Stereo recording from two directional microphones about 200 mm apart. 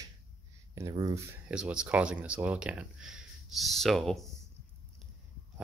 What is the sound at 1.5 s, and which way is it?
Speech, 5° right (ahead or behind).